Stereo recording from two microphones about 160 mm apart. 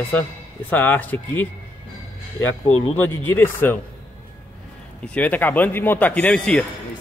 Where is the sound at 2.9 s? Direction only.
10° left (ahead or behind).